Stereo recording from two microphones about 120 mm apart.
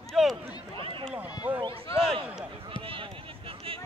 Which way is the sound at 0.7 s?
45° right (ahead or behind).